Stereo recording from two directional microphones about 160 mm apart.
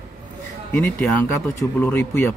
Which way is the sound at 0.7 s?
10° left (ahead or behind).